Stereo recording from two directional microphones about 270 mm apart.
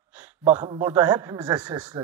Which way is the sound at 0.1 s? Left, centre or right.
Centre.